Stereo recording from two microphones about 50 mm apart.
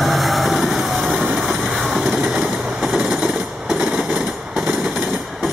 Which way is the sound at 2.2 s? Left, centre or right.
Centre.